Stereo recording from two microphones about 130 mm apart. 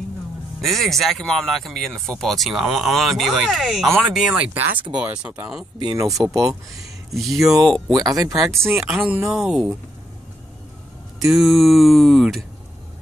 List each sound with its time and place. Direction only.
0.6 s speech: centre (ahead or behind)
5.8 s speech: 30° right (ahead or behind)
7.1 s speech: centre (ahead or behind)
7.9 s speech: 30° right (ahead or behind)
8.7 s speech: 5° right (ahead or behind)
11.3 s speech: centre (ahead or behind)